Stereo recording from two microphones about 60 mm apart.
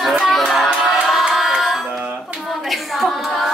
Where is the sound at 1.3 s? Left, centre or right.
Centre.